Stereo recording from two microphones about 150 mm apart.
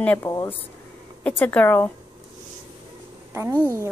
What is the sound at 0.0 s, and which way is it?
Speech, 10° left (ahead or behind).